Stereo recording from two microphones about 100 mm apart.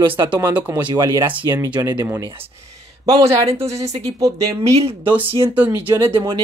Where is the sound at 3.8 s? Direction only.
35° right (ahead or behind).